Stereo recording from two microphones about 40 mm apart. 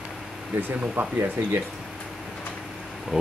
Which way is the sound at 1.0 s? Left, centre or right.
Right.